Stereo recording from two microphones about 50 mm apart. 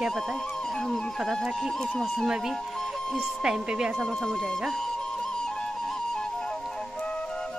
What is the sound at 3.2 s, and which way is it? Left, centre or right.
Speech, centre.